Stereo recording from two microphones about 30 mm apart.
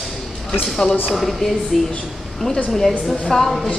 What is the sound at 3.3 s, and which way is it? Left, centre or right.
Speech, left.